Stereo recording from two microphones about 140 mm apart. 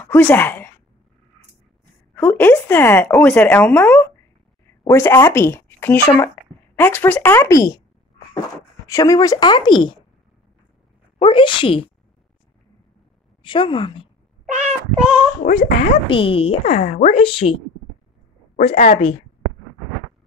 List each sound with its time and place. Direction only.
0.0 s speech: 15° left (ahead or behind)
2.1 s speech: 15° left (ahead or behind)
8.8 s speech: 25° left (ahead or behind)
11.1 s speech: 40° left (ahead or behind)
13.4 s speech: 35° left (ahead or behind)
14.5 s speech: 55° right (ahead or behind)
15.4 s speech: 90° left
16.1 s speech: 40° left (ahead or behind)
17.2 s speech: 40° left (ahead or behind)
18.9 s speech: 40° left (ahead or behind)